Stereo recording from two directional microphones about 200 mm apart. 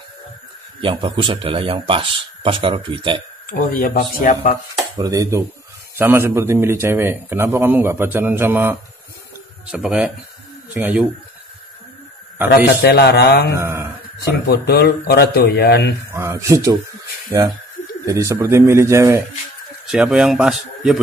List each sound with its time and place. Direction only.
0.7 s a man's voice: 25° right (ahead or behind)
3.4 s speech: 45° left (ahead or behind)
4.9 s a man's voice: 20° right (ahead or behind)
12.4 s a man's voice: 55° left (ahead or behind)
13.6 s a man's voice: 15° right (ahead or behind)
14.5 s speech: 50° left (ahead or behind)
16.1 s a man's voice: 15° right (ahead or behind)
18.0 s a man's voice: 15° right (ahead or behind)
19.9 s speech: 5° right (ahead or behind)